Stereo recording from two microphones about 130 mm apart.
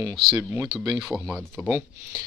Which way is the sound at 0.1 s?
Centre (ahead or behind).